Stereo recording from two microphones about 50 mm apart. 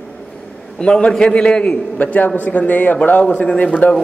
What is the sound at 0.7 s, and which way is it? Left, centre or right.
Speech, centre.